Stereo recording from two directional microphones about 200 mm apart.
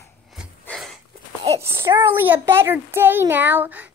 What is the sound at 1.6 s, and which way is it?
A child's voice, 10° right (ahead or behind).